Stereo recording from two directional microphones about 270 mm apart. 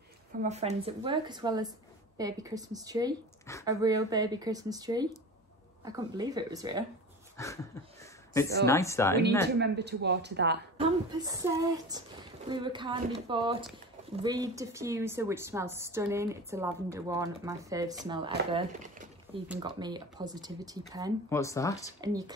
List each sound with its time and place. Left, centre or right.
0.4 s a woman's voice: right
7.4 s speech: centre
9.6 s speech: right
10.8 s a woman's voice: centre
19.6 s a woman's voice: centre
21.3 s speech: centre
22.0 s a woman's voice: centre